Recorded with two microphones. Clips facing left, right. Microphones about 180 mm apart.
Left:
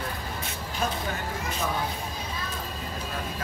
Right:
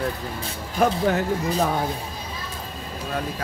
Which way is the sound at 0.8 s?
70° right (ahead or behind).